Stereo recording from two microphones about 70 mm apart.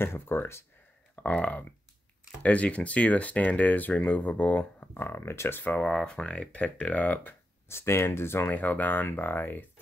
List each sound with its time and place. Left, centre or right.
0.0 s speech: left
1.1 s speech: left
5.9 s speech: centre
7.6 s speech: left